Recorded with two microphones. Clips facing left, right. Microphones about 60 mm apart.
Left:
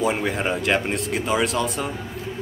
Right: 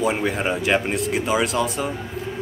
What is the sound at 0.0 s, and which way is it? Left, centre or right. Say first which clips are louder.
Speech: right 1 dB; centre.